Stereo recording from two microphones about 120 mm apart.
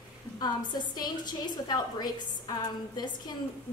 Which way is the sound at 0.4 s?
35° left (ahead or behind).